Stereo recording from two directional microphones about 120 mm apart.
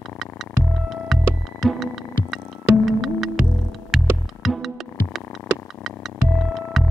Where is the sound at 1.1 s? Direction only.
Centre (ahead or behind).